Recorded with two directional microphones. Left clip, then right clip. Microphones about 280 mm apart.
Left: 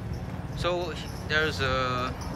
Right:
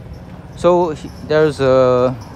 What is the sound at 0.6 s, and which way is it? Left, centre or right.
Speech, centre.